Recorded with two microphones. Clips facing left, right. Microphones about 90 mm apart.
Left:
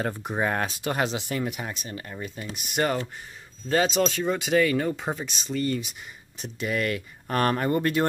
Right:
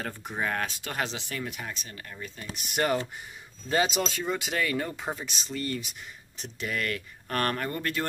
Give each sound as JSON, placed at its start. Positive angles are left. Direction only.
{"t": 0.4, "sound": "speech", "side_deg": 20}
{"t": 2.5, "sound": "speech", "side_deg": 0}